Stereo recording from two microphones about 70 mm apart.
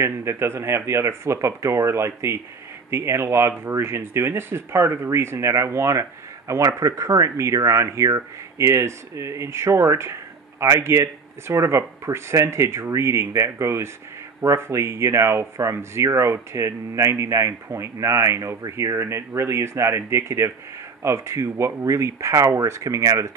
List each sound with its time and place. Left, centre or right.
0.0 s speech: right